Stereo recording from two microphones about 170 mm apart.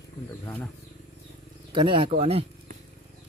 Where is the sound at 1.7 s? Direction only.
30° right (ahead or behind).